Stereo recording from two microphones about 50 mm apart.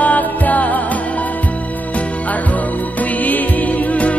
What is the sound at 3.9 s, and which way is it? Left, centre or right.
Music, left.